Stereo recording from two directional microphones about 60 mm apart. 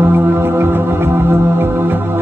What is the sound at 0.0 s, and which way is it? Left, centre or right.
Music, right.